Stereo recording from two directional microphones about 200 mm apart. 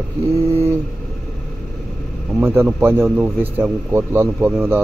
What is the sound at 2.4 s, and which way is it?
A man's voice, 10° right (ahead or behind).